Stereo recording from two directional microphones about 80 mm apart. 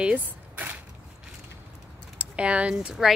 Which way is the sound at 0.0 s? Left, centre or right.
Centre.